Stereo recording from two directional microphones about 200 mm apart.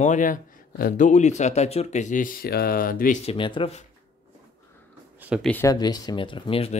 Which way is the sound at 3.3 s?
25° left (ahead or behind).